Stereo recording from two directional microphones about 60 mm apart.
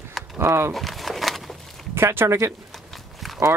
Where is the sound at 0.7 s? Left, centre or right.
Centre.